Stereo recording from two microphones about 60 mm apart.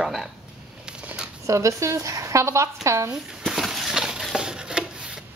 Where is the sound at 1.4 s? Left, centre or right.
Right.